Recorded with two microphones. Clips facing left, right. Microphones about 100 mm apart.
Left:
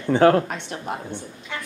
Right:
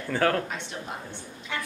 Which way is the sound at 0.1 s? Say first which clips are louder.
Left 9 dB; 25° left (ahead or behind).